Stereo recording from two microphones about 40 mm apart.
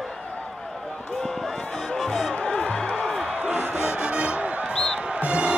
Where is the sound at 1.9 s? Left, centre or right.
Centre.